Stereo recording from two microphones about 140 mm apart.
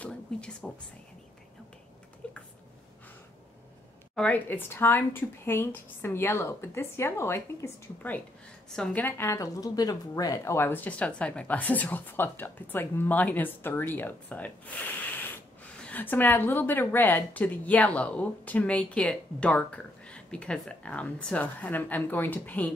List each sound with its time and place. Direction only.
0.0 s a sound: 5° left (ahead or behind)
2.2 s a sound: 5° left (ahead or behind)
4.1 s a woman's voice: 10° left (ahead or behind)
8.7 s a woman's voice: 5° left (ahead or behind)
9.0 s a woman's voice: 20° left (ahead or behind)
15.8 s a woman's voice: 10° left (ahead or behind)